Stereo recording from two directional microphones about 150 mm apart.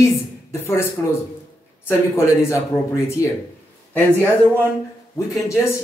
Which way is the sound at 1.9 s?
20° left (ahead or behind).